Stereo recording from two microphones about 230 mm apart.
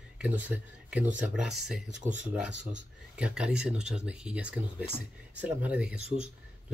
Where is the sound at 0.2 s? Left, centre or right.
Centre.